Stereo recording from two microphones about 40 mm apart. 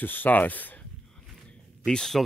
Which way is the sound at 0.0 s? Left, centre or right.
Left.